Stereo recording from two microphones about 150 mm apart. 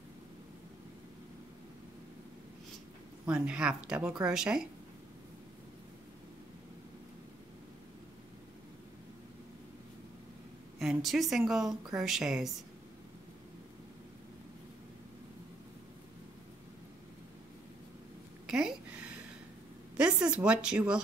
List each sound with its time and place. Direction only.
3.3 s speech: 5° right (ahead or behind)
10.8 s speech: centre (ahead or behind)
18.5 s a sound: 5° right (ahead or behind)